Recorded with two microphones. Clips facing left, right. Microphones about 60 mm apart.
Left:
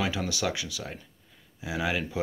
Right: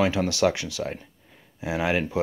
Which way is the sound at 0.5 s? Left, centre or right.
Right.